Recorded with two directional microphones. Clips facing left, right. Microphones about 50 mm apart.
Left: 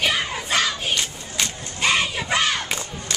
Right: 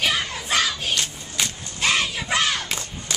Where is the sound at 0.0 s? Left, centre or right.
Centre.